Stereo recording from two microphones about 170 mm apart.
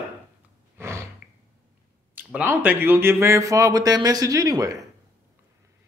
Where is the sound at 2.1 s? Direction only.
10° right (ahead or behind).